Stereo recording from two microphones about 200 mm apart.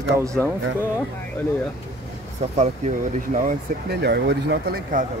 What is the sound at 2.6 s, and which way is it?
Speech, 40° right (ahead or behind).